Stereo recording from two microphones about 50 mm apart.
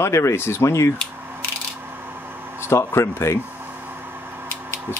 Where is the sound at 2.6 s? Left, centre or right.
Left.